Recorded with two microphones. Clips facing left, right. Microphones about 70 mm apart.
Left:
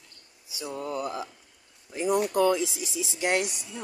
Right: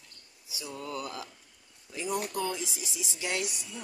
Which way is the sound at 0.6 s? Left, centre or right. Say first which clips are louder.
Left 5 dB; left.